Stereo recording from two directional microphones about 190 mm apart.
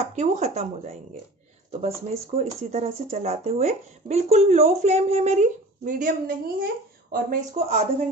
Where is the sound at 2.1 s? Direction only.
35° right (ahead or behind).